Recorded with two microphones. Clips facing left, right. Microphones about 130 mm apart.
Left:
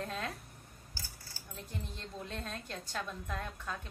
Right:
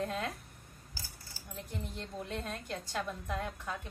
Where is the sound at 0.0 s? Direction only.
10° right (ahead or behind).